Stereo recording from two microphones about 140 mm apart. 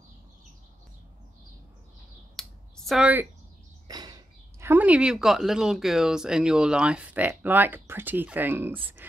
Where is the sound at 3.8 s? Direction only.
30° right (ahead or behind).